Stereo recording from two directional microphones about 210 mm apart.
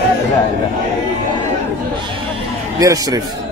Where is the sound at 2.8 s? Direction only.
15° right (ahead or behind).